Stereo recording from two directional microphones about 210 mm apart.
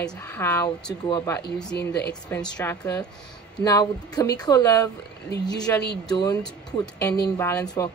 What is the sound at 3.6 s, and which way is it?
Speech, 20° left (ahead or behind).